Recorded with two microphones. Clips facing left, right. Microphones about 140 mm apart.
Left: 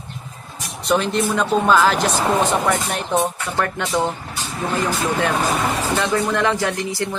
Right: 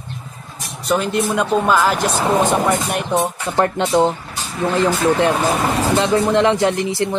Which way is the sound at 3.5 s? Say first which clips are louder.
Right 7 dB; 25° right (ahead or behind).